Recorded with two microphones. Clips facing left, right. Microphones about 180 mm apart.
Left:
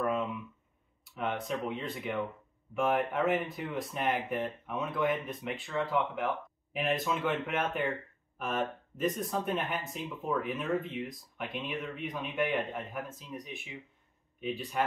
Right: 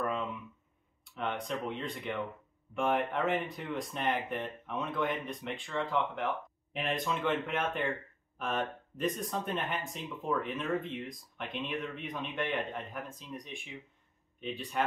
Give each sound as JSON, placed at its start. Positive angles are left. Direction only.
{"t": 1.0, "sound": "speech", "side_deg": 5}